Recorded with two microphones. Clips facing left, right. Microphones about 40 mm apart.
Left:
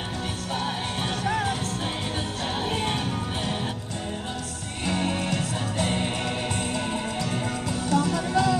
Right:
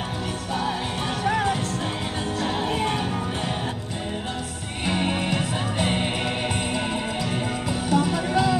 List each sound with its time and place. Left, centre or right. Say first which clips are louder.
1.2 s music: right 4 dB; right
4.8 s music: right 2 dB; right
7.9 s music: right 1 dB; right